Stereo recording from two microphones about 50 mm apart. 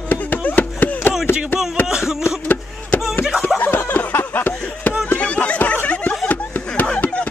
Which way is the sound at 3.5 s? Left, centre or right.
Left.